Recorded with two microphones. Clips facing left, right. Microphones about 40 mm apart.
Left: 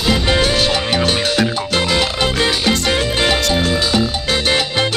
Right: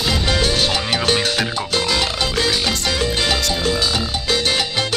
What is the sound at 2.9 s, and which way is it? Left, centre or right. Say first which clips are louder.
Speech: left 1 dB; left.